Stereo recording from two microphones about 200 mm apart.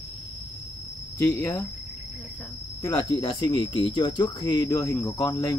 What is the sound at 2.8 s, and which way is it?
Speech, 20° left (ahead or behind).